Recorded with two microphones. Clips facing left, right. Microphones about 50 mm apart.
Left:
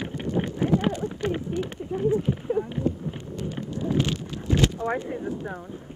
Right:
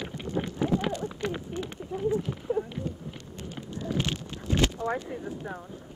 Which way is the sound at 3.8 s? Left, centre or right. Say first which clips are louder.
Left 5 dB; left.